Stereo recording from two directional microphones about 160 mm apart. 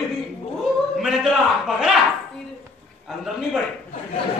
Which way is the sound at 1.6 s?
Centre (ahead or behind).